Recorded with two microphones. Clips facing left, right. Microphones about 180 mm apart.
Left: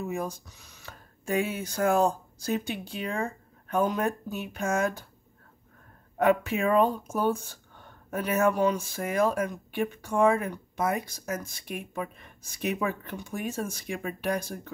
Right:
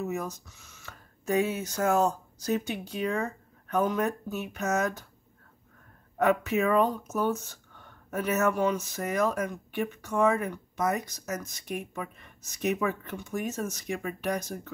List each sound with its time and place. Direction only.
0.0 s speech: 30° left (ahead or behind)
6.1 s speech: 30° left (ahead or behind)
13.0 s speech: 30° left (ahead or behind)